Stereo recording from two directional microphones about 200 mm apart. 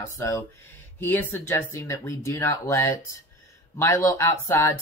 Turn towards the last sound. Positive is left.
turn(degrees=15)  # may be behind; listen again after turning